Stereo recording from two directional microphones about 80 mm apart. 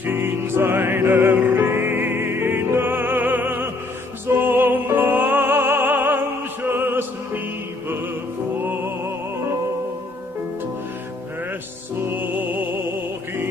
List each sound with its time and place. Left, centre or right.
0.0 s music: right
8.6 s music: right
12.1 s music: right